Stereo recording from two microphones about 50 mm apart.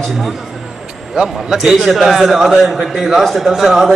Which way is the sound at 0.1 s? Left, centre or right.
Centre.